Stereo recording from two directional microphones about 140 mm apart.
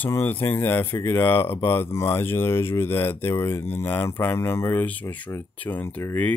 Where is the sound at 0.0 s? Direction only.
15° left (ahead or behind).